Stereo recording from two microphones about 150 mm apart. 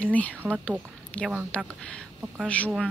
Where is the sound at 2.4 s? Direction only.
10° left (ahead or behind).